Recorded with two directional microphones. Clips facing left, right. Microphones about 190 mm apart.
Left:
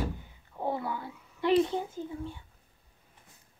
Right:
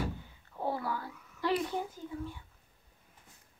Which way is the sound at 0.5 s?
20° left (ahead or behind).